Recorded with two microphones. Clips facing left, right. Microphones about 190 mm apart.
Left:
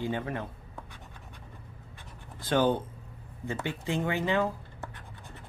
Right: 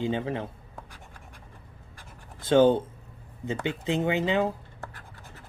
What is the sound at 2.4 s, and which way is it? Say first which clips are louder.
Speech: right 6 dB; 25° right (ahead or behind).